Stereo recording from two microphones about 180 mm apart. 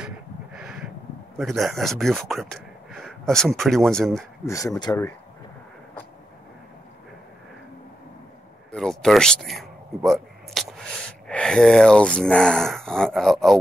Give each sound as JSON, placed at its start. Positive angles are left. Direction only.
{"t": 0.6, "sound": "a sound", "side_deg": -5}
{"t": 1.4, "sound": "speech", "side_deg": 0}
{"t": 4.5, "sound": "speech", "side_deg": 15}
{"t": 8.7, "sound": "speech", "side_deg": 0}